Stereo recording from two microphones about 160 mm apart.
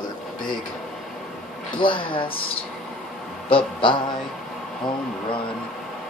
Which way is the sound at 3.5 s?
30° left (ahead or behind).